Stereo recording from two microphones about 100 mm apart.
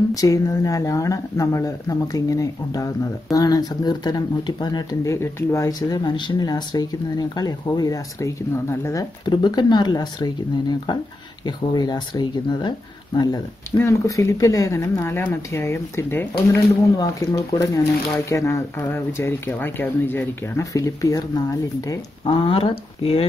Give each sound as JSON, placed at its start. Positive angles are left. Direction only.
{"t": 0.1, "sound": "speech", "side_deg": 35}
{"t": 5.0, "sound": "speech", "side_deg": 30}
{"t": 9.2, "sound": "speech", "side_deg": 45}
{"t": 13.7, "sound": "speech", "side_deg": 25}
{"t": 16.9, "sound": "speech", "side_deg": 40}
{"t": 20.7, "sound": "speech", "side_deg": 35}
{"t": 22.2, "sound": "speech", "side_deg": 65}